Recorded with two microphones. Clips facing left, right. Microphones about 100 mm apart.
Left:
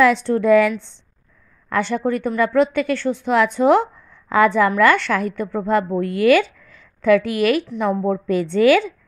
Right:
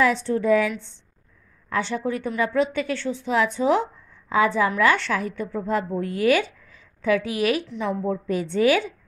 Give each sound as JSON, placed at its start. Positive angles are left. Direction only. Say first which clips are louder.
{"t": 0.0, "sound": "a woman's voice", "louder": "left 5 dB", "side_deg": 70}
{"t": 1.7, "sound": "a woman's voice", "louder": "left 5 dB", "side_deg": 55}
{"t": 7.6, "sound": "a woman's voice", "louder": "left 6 dB", "side_deg": 50}